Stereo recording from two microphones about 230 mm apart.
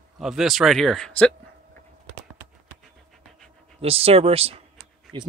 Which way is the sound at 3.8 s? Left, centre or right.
Right.